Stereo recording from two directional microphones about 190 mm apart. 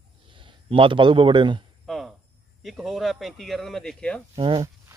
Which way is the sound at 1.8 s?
Centre (ahead or behind).